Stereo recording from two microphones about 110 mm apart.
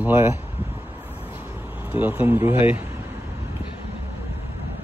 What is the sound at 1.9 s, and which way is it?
Speech, 15° right (ahead or behind).